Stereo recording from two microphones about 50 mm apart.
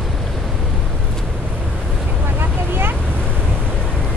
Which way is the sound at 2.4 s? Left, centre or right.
Right.